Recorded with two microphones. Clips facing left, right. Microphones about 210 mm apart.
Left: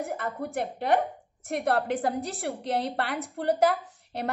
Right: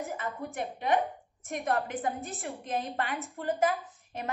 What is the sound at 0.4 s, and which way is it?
A woman's voice, 65° left (ahead or behind).